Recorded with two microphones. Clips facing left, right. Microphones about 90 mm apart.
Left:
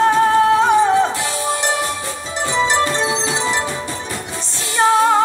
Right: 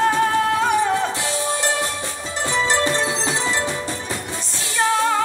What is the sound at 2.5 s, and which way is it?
Music, 20° left (ahead or behind).